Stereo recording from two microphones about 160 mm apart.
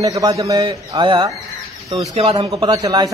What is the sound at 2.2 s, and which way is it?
Speech, 40° right (ahead or behind).